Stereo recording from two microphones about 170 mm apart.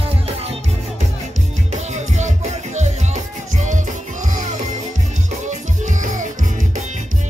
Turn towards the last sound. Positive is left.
turn(degrees=-50)  # may be behind; listen again after turning